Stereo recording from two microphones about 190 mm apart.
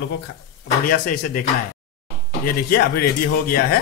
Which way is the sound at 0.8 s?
50° left (ahead or behind).